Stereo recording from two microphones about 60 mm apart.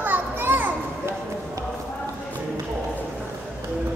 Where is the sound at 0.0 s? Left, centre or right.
Right.